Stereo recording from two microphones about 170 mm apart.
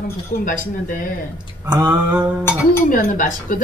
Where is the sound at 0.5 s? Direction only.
50° left (ahead or behind).